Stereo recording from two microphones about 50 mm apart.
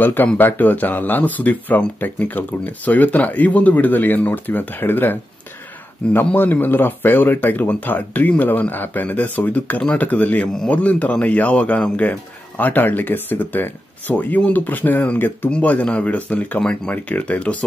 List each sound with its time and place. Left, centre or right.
0.0 s speech: left
15.5 s speech: left